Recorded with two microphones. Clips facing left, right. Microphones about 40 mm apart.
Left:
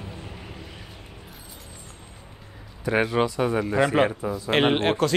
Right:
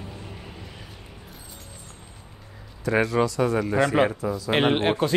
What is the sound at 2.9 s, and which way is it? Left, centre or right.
Speech, left.